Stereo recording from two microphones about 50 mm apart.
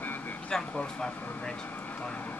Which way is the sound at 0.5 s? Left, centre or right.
Centre.